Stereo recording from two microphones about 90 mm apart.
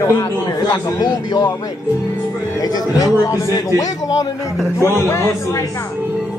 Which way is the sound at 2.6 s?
45° left (ahead or behind).